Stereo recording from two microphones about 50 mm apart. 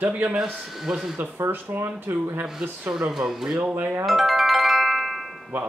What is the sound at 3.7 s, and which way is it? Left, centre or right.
Speech, right.